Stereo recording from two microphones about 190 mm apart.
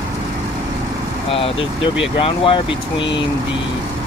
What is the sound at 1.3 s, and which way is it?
Speech, 30° left (ahead or behind).